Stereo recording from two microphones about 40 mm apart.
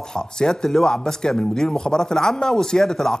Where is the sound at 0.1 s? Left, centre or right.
Centre.